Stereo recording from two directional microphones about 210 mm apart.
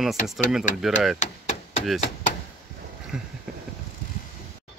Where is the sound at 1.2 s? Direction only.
35° left (ahead or behind).